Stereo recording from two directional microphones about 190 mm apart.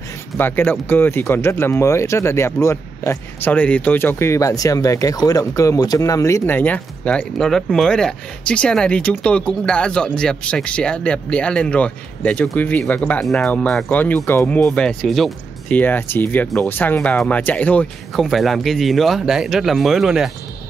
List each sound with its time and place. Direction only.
0.4 s speech: 10° left (ahead or behind)